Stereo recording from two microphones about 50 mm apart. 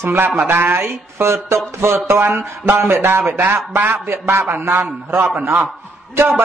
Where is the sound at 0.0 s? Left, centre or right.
Right.